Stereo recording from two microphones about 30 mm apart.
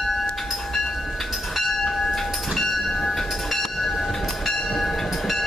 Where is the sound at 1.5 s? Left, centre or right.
Centre.